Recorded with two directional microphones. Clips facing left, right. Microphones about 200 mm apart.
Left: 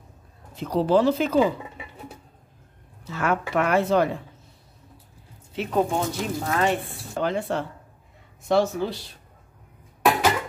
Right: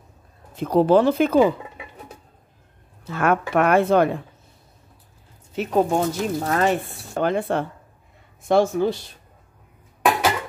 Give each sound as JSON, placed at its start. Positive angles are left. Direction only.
{"t": 0.6, "sound": "speech", "side_deg": -55}
{"t": 3.1, "sound": "speech", "side_deg": -55}
{"t": 5.5, "sound": "speech", "side_deg": -45}
{"t": 7.2, "sound": "speech", "side_deg": -55}